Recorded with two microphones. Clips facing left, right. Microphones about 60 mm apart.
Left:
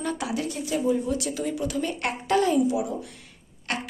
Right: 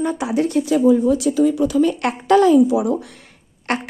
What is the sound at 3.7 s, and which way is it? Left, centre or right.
Speech, right.